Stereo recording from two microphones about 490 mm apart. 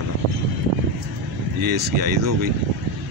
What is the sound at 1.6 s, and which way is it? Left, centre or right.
Speech, right.